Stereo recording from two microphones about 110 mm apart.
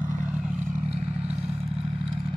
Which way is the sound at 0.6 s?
80° right.